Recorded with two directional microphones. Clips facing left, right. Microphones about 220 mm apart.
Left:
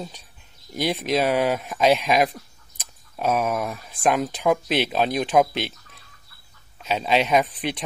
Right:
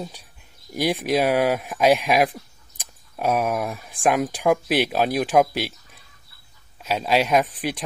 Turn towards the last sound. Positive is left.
turn(degrees=-10)  # may be behind; listen again after turning